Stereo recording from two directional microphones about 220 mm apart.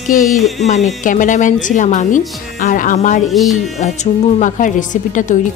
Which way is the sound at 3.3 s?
Centre (ahead or behind).